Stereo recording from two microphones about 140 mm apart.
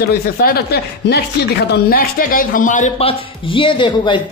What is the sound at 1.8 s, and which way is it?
Speech, 90° left.